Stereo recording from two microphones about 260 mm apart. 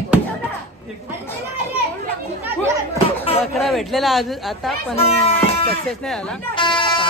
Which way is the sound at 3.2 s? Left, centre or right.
Left.